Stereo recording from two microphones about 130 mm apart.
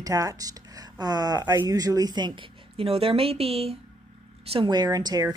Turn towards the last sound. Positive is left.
turn(degrees=-30)  # may be behind; listen again after turning